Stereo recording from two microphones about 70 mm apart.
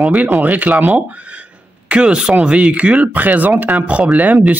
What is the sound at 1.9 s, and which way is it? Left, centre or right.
Speech, centre.